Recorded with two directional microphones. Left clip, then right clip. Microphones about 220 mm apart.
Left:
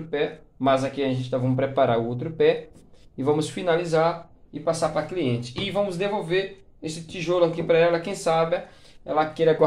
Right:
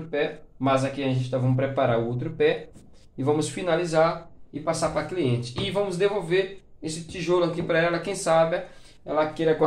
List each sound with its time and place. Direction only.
0.1 s speech: 35° left (ahead or behind)